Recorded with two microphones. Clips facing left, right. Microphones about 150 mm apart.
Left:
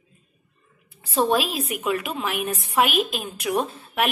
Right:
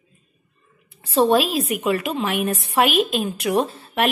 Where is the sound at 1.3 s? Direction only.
Centre (ahead or behind).